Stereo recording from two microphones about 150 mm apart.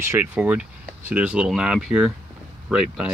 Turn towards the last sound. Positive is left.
turn(degrees=-5)  # may be behind; listen again after turning